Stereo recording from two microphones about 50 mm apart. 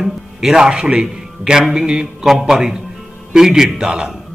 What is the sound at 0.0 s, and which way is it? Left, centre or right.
A man's voice, centre.